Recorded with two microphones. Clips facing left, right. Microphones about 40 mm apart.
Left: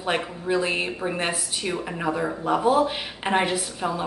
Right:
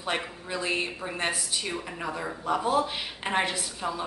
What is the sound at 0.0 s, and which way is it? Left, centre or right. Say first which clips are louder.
A woman's voice: left 5 dB; centre.